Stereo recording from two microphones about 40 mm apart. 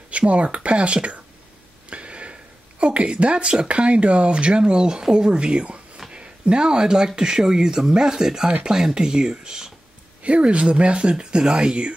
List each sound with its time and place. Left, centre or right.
0.3 s speech: right
1.9 s a sound: right
2.8 s speech: right
10.2 s speech: right